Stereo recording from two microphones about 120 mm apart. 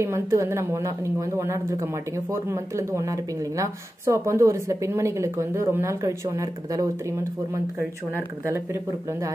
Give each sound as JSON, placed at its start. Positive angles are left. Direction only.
{"t": 0.0, "sound": "a woman's voice", "side_deg": -25}